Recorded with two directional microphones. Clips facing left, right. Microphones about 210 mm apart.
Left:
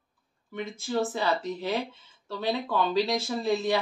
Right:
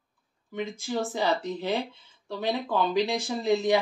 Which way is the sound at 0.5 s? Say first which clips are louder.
Even; 15° right (ahead or behind).